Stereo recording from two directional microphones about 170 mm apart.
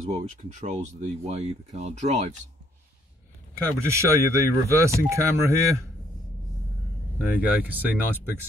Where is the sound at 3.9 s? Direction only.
15° right (ahead or behind).